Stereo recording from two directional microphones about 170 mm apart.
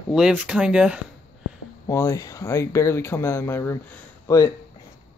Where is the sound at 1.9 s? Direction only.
15° left (ahead or behind).